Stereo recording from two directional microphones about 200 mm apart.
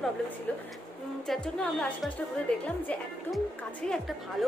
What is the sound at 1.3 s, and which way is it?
A woman's voice, 5° left (ahead or behind).